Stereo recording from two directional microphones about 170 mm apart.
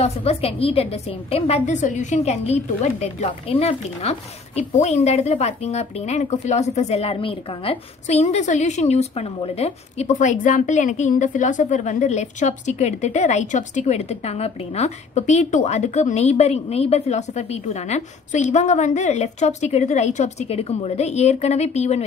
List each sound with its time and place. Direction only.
0.0 s speech: 35° left (ahead or behind)